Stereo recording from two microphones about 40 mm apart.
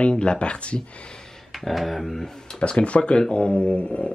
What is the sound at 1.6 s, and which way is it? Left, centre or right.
Speech, centre.